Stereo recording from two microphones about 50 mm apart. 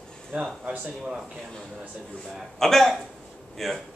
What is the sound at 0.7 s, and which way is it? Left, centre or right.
Speech, centre.